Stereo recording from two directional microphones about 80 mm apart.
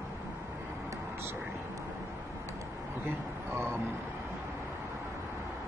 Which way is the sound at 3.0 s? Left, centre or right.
Right.